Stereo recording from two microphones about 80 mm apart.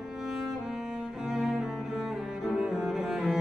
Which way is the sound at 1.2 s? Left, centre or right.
Centre.